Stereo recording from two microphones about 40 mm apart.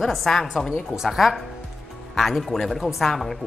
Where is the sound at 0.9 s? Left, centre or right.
Centre.